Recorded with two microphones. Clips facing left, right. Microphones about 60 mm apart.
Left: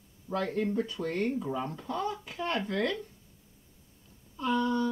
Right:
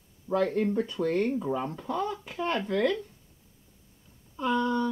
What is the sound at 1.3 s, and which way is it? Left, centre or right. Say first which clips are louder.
Speech: right 3 dB; centre.